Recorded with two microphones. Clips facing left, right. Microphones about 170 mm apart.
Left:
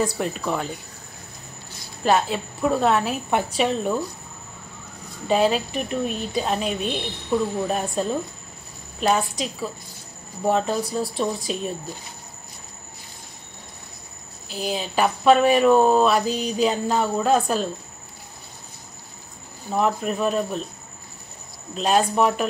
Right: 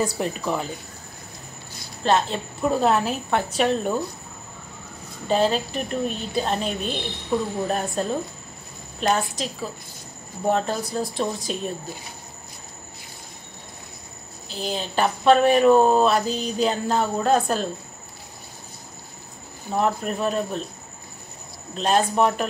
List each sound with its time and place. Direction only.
0.0 s speech: centre (ahead or behind)
2.0 s speech: 5° left (ahead or behind)
5.3 s speech: 5° left (ahead or behind)
10.4 s speech: centre (ahead or behind)
14.5 s speech: 5° left (ahead or behind)
19.7 s speech: centre (ahead or behind)
21.7 s speech: centre (ahead or behind)